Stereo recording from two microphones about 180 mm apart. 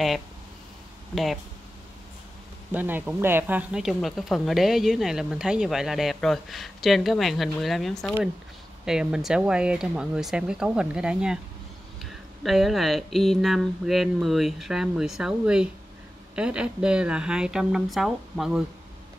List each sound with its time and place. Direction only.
1.1 s speech: centre (ahead or behind)
2.7 s speech: 10° right (ahead or behind)